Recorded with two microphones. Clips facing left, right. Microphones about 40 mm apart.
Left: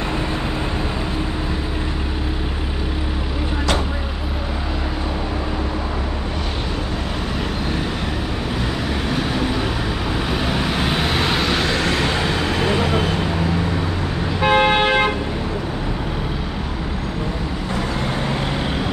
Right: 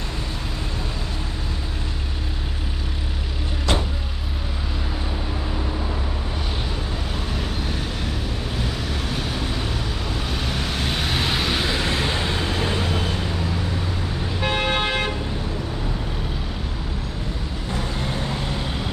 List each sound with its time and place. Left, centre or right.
9.1 s vehicle: centre
11.9 s vehicle: left
14.4 s vehicle: left